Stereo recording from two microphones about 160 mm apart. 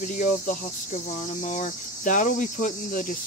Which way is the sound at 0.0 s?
55° left (ahead or behind).